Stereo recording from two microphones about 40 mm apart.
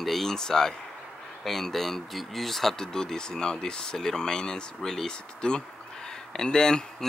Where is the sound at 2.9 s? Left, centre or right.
Centre.